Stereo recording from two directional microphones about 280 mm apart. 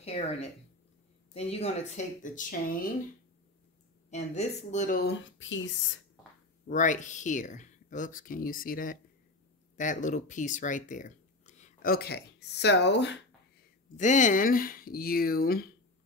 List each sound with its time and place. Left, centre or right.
0.0 s speech: left
4.1 s speech: left
6.7 s speech: left
13.9 s speech: left